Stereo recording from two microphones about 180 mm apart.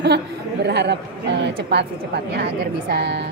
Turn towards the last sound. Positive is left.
turn(degrees=-75)  # may be behind; listen again after turning